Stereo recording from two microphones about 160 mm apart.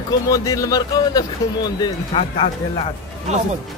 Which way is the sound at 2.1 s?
40° left (ahead or behind).